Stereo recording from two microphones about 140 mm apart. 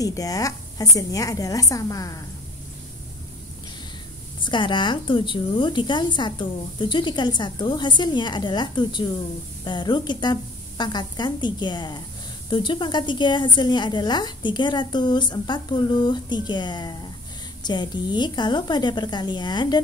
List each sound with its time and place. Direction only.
0.0 s a woman's voice: 25° left (ahead or behind)
4.4 s a woman's voice: 35° left (ahead or behind)